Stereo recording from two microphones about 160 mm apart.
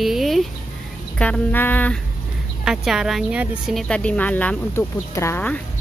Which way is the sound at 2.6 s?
5° right (ahead or behind).